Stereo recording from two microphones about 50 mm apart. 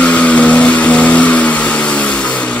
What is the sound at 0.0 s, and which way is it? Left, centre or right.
Vehicle, left.